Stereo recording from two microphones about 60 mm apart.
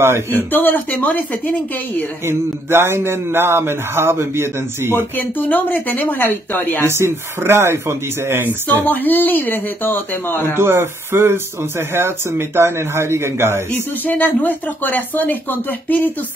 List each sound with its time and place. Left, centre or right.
0.0 s speech: right
0.5 s speech: left
2.2 s speech: right
4.9 s speech: left
6.9 s speech: right
8.3 s a sound: right
8.6 s speech: left
10.5 s speech: right
14.0 s speech: left